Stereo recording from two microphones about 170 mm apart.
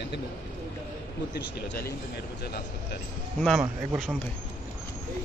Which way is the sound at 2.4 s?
70° left (ahead or behind).